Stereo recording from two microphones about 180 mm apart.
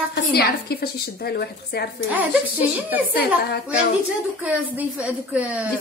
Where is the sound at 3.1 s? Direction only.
60° left (ahead or behind).